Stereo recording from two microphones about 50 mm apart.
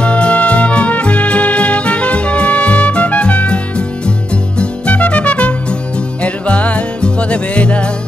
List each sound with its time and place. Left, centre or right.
0.0 s music: left